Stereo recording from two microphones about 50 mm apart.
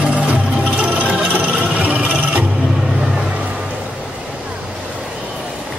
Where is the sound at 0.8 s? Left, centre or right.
Right.